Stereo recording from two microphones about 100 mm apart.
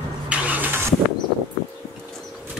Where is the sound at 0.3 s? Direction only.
15° right (ahead or behind).